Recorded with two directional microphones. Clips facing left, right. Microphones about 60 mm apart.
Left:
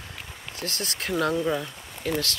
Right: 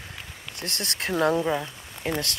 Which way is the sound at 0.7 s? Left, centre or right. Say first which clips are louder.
Right 2 dB; right.